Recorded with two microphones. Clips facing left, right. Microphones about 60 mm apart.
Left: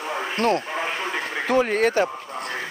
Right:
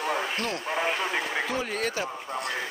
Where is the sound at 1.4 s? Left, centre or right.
Left.